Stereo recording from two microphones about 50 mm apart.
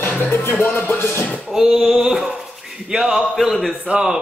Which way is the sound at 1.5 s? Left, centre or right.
Centre.